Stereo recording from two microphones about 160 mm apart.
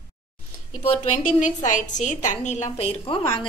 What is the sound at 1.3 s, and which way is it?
A woman's voice, 50° left (ahead or behind).